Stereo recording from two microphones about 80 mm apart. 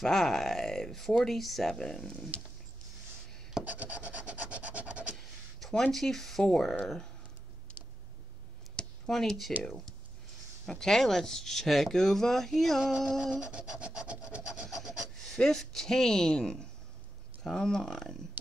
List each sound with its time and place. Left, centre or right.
0.0 s speech: centre
3.7 s rub: centre
5.1 s speech: centre
8.7 s a sound: centre
9.6 s speech: centre
13.3 s wood: centre
15.3 s speech: centre